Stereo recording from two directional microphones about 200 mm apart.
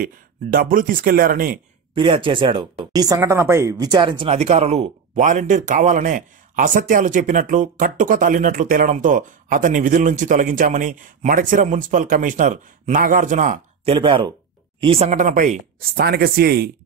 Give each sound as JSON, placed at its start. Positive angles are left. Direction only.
{"t": 0.0, "sound": "speech", "side_deg": -45}
{"t": 2.0, "sound": "speech", "side_deg": -25}
{"t": 13.9, "sound": "speech", "side_deg": -25}
{"t": 16.0, "sound": "speech", "side_deg": -50}